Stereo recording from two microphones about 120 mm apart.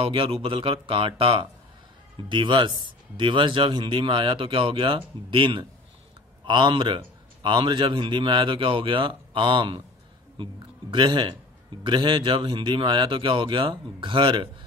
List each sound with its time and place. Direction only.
0.0 s a man's voice: 50° right (ahead or behind)